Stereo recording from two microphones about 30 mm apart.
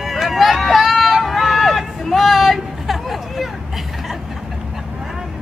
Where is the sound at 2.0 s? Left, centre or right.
Centre.